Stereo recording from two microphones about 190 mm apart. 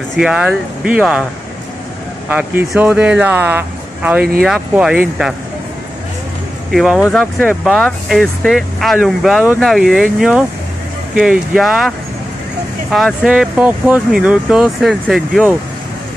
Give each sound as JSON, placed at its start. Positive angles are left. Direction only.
{"t": 0.1, "sound": "speech", "side_deg": -5}
{"t": 2.2, "sound": "speech", "side_deg": -10}
{"t": 4.2, "sound": "speech", "side_deg": -50}
{"t": 4.5, "sound": "speech", "side_deg": -5}
{"t": 6.7, "sound": "speech", "side_deg": 0}
{"t": 12.9, "sound": "speech", "side_deg": 0}